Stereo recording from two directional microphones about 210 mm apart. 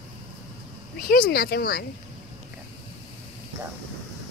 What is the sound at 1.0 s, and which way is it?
Speech, 45° left (ahead or behind).